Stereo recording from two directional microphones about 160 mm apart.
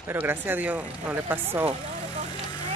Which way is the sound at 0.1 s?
10° right (ahead or behind).